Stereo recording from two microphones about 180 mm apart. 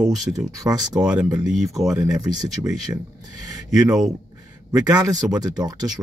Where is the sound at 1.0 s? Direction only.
5° right (ahead or behind).